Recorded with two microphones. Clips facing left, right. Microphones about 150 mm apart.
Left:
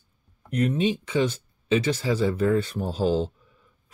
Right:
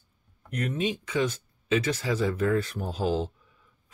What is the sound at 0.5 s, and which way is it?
Speech, 30° left (ahead or behind).